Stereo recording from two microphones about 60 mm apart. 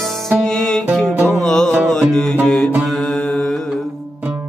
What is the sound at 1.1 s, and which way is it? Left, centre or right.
Music, right.